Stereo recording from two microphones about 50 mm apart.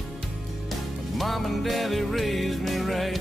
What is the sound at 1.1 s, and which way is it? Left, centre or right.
Music, centre.